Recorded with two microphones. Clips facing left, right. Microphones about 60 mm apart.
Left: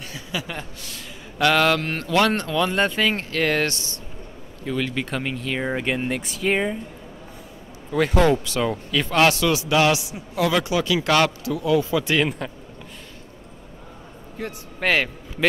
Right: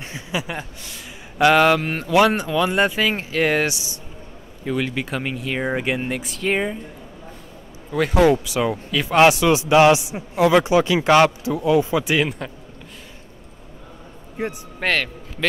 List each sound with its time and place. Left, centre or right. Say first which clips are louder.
0.0 s speech: right 3 dB; right; by 6.8 s centre
7.9 s speech: right 2 dB; centre
9.1 s a man's voice: right 5 dB; centre
14.4 s a man's voice: right 5 dB; right
14.8 s a man's voice: left 1 dB; centre